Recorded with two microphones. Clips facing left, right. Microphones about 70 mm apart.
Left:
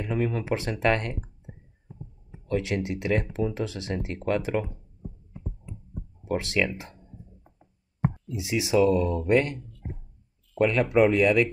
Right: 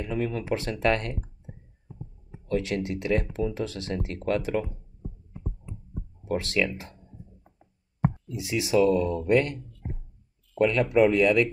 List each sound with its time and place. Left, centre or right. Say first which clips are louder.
0.0 s speech: left 1 dB; left
6.2 s speech: even; left
8.3 s speech: left 2 dB; centre
10.7 s speech: even; centre